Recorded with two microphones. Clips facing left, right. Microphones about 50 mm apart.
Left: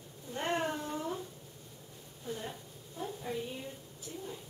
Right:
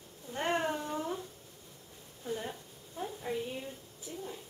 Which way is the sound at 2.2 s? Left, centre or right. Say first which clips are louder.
Right 3 dB; centre.